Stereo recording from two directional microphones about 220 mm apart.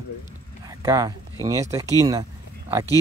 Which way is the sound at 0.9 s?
15° right (ahead or behind).